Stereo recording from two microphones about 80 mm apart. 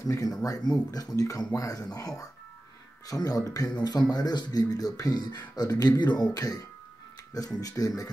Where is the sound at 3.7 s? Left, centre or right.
Left.